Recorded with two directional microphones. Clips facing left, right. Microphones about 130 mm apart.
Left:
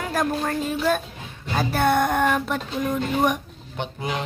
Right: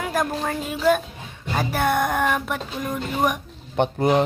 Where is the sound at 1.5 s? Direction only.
10° right (ahead or behind).